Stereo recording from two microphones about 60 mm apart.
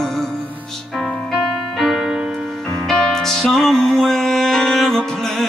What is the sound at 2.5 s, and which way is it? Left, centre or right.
Music, centre.